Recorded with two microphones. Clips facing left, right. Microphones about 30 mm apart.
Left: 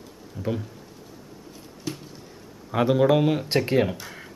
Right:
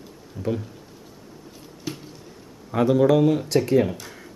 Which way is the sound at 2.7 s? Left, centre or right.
Centre.